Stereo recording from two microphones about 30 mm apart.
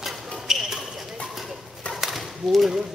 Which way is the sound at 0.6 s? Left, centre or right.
Centre.